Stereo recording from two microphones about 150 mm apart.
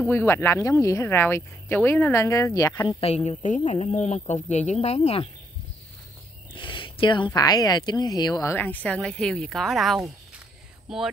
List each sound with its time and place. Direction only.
0.0 s speech: 15° left (ahead or behind)
2.9 s a woman's voice: 40° left (ahead or behind)
3.3 s a woman's voice: 55° left (ahead or behind)
6.5 s speech: 35° left (ahead or behind); by 9.9 s centre (ahead or behind)